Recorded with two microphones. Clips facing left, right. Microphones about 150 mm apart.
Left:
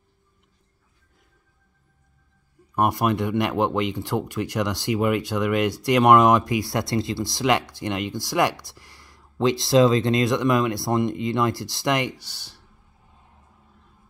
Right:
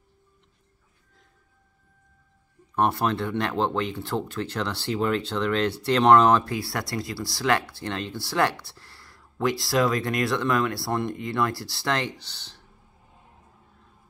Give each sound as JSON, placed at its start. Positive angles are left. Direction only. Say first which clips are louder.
{"t": 2.7, "sound": "speech", "louder": "left 2 dB", "side_deg": 10}